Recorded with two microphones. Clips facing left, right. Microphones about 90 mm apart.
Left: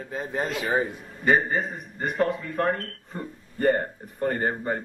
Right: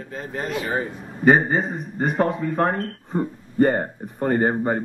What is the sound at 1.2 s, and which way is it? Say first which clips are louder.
Speech: right 5 dB; 35° right (ahead or behind).